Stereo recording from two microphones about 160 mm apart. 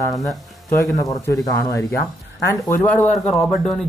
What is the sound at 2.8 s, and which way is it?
Speech, 10° left (ahead or behind).